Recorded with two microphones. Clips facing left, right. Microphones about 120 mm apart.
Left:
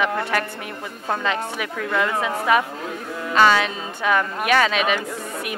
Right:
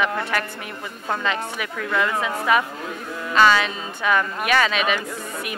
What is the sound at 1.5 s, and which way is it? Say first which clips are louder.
Speech: left 1 dB; 35° left (ahead or behind).